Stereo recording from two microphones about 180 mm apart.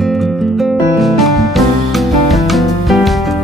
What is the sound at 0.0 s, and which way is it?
Music, centre (ahead or behind).